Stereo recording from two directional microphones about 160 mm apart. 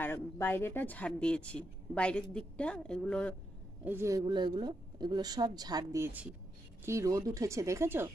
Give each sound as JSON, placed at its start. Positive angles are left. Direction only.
{"t": 0.0, "sound": "a woman's voice", "side_deg": 15}
{"t": 3.8, "sound": "a man's voice", "side_deg": -15}
{"t": 4.3, "sound": "a woman's voice", "side_deg": -30}